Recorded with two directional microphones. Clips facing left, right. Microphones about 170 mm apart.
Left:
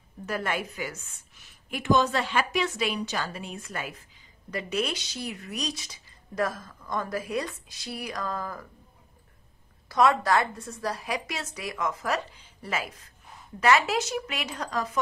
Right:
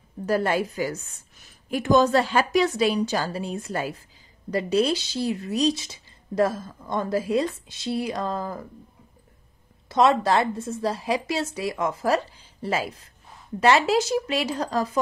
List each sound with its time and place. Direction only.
0.3 s a woman's voice: 35° right (ahead or behind)
9.8 s a woman's voice: 25° right (ahead or behind)